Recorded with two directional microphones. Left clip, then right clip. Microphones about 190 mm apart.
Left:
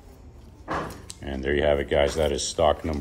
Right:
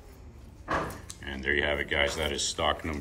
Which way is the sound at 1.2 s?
35° left (ahead or behind).